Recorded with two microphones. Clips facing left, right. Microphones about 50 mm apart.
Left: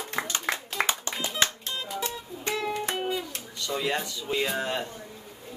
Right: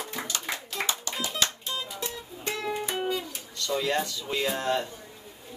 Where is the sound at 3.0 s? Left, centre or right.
Centre.